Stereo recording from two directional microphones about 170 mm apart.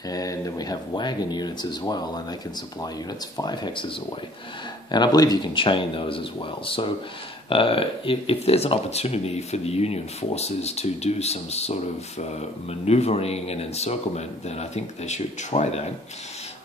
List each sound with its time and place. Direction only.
0.1 s speech: 20° left (ahead or behind)
3.3 s speech: 25° left (ahead or behind)
4.9 s speech: 25° left (ahead or behind); by 15.9 s 40° left (ahead or behind)